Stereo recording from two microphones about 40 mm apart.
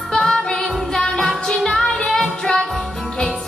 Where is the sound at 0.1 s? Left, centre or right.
Centre.